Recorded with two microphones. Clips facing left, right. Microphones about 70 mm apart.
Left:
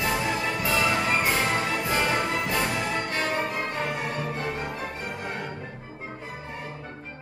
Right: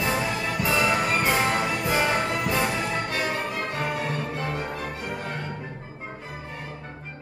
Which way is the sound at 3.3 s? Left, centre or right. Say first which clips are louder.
Left 1 dB; centre.